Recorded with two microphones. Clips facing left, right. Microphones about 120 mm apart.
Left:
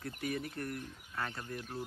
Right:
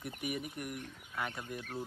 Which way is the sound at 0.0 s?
15° right (ahead or behind).